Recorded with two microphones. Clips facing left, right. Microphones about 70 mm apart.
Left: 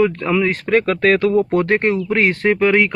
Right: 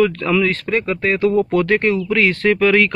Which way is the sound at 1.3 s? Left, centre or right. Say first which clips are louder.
Even; left.